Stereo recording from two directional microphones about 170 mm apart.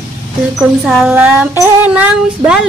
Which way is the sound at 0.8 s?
5° right (ahead or behind).